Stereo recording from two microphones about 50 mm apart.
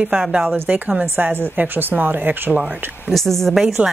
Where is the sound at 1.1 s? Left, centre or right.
Right.